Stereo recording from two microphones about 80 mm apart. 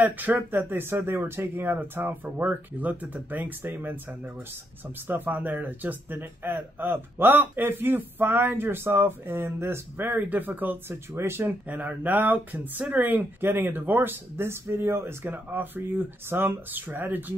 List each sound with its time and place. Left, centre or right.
0.0 s speech: right
11.6 s speech: centre